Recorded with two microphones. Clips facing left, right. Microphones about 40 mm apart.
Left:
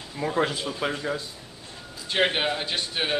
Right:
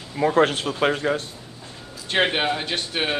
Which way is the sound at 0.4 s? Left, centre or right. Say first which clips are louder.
Right 5 dB; right.